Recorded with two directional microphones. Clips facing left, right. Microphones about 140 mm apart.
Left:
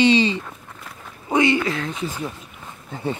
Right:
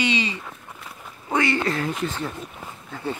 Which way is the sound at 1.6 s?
Centre (ahead or behind).